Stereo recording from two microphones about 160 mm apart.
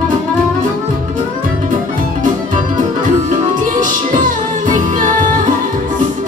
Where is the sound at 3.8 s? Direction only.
55° right (ahead or behind).